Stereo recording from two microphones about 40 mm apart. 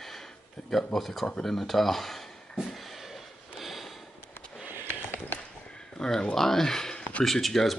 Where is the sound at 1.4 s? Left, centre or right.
Centre.